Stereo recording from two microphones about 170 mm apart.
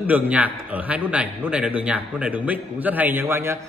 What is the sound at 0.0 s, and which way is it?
A man's voice, 10° right (ahead or behind).